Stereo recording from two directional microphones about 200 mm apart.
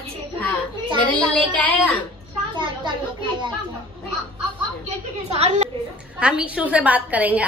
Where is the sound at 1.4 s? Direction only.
5° left (ahead or behind).